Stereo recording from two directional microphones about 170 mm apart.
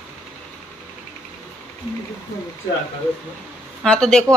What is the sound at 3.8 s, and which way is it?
Speech, 5° left (ahead or behind).